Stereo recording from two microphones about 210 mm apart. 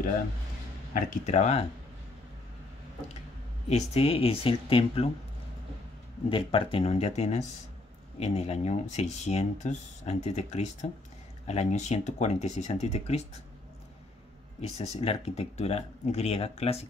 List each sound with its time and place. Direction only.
0.9 s speech: 35° left (ahead or behind)
3.6 s speech: 30° left (ahead or behind)
6.2 s speech: 25° left (ahead or behind)
14.6 s speech: 30° left (ahead or behind)